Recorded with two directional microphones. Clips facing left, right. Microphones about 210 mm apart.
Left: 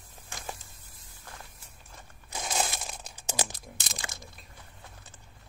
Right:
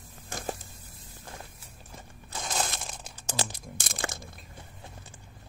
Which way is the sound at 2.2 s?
10° left (ahead or behind).